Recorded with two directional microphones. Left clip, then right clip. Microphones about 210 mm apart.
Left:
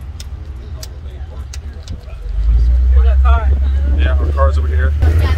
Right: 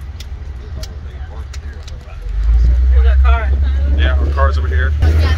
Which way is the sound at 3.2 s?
5° right (ahead or behind).